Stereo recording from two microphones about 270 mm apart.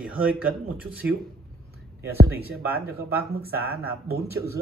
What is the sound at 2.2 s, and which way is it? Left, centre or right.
Speech, right.